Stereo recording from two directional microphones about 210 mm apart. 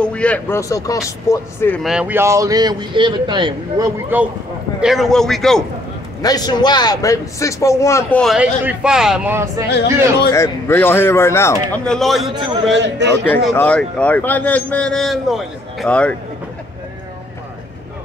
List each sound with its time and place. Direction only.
0.0 s a man's voice: 5° left (ahead or behind)
1.8 s a man's voice: 5° right (ahead or behind)
4.8 s speech: centre (ahead or behind)
6.2 s a man's voice: 20° left (ahead or behind)
8.2 s speech: 5° right (ahead or behind)
10.3 s a man's voice: 10° left (ahead or behind)
12.7 s a man's voice: 55° right (ahead or behind)
13.1 s speech: 10° left (ahead or behind)